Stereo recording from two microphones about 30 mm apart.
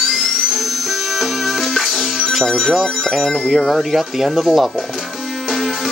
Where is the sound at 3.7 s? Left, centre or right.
Centre.